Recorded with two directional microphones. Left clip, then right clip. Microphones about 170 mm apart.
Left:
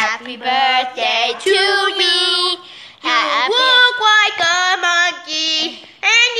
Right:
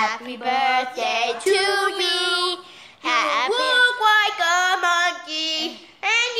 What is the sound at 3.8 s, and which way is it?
Music, 25° left (ahead or behind).